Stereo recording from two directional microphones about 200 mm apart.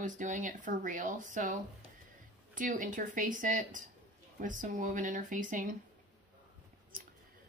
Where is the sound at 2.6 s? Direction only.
40° right (ahead or behind).